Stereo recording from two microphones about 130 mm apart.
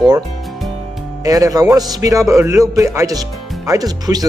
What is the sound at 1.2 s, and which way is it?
A man's voice, 25° right (ahead or behind).